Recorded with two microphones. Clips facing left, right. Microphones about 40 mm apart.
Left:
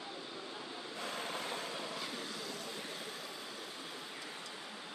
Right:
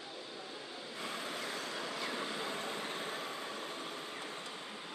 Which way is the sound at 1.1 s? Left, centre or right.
Left.